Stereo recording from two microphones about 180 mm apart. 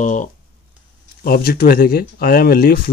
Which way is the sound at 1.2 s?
55° left (ahead or behind).